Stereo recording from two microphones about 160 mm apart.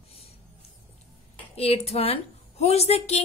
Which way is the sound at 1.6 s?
40° left (ahead or behind).